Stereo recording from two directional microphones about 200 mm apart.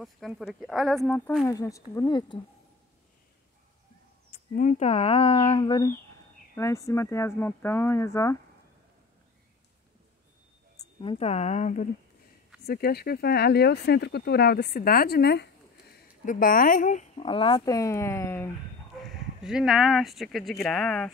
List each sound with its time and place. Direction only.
0.0 s speech: centre (ahead or behind); by 2.4 s 25° left (ahead or behind)
4.3 s speech: 40° left (ahead or behind)
5.6 s speech: 20° left (ahead or behind)
10.8 s speech: 25° left (ahead or behind)
12.6 s speech: 50° left (ahead or behind)
17.2 s speech: 25° left (ahead or behind)
18.9 s speech: centre (ahead or behind)